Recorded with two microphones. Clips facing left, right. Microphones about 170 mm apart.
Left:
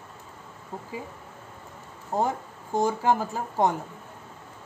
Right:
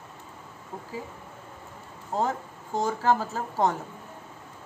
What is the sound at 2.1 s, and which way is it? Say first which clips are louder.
A woman's voice: left 1 dB; 15° left (ahead or behind).